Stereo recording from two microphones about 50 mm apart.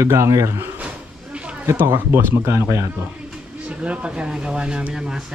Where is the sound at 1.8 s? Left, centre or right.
Right.